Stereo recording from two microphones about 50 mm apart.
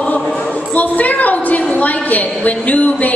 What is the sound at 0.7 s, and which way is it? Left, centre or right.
A woman's voice, left.